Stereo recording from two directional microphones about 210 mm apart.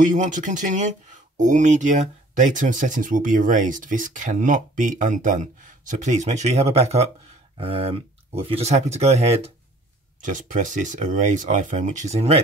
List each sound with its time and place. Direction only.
0.0 s speech: 40° right (ahead or behind)